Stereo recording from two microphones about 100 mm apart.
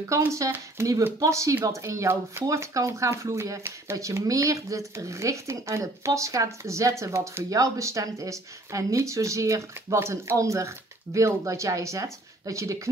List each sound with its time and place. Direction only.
0.1 s speech: 30° right (ahead or behind)